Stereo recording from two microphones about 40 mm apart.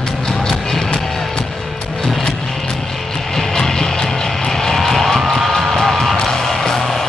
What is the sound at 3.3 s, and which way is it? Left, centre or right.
Vehicle, centre.